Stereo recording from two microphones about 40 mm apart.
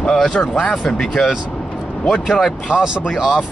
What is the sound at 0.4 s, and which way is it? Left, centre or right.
Speech, left.